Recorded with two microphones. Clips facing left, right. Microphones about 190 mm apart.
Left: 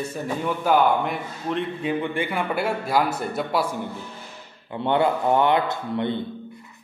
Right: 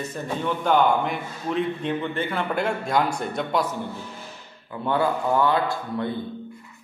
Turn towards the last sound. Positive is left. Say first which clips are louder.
# left 2 dB
turn(degrees=20)  # may be behind; listen again after turning